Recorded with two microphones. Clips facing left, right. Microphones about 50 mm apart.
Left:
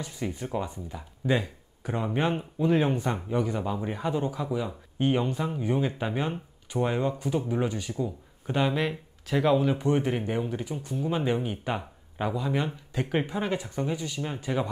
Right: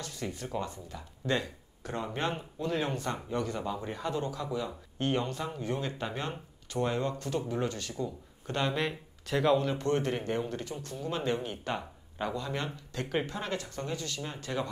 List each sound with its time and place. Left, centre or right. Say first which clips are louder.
0.0 s speech: left 4 dB; centre